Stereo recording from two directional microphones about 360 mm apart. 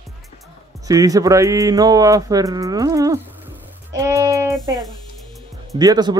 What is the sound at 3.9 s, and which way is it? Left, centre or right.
Child singing, centre.